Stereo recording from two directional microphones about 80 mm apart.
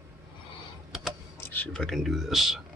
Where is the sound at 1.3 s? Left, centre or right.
Left.